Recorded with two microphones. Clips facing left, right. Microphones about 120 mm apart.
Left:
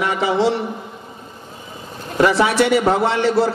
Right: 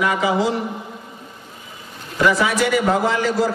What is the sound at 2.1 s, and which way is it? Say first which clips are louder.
Speech: left 3 dB; 30° left (ahead or behind).